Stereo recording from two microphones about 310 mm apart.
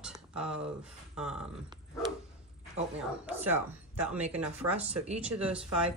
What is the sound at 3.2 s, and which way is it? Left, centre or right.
Speech, centre.